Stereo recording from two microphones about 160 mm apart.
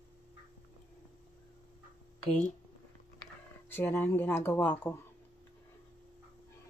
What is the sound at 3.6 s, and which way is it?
Speech, 15° left (ahead or behind).